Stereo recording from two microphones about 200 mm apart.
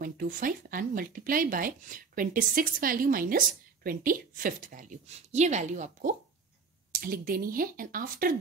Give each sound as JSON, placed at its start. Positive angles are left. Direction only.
{"t": 0.0, "sound": "speech", "side_deg": -45}